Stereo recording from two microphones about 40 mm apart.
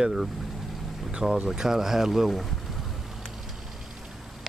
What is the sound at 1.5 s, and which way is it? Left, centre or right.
Speech, centre.